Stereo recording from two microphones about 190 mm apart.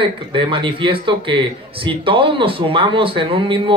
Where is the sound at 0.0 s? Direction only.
25° right (ahead or behind).